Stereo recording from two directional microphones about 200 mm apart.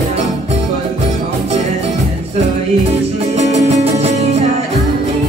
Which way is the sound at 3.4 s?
35° right (ahead or behind).